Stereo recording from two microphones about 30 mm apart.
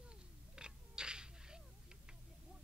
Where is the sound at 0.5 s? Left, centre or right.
Right.